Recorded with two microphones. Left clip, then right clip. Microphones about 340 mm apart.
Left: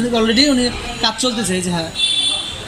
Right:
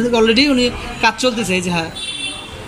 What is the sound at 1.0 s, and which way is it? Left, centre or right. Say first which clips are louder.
Speech: right 4 dB; right.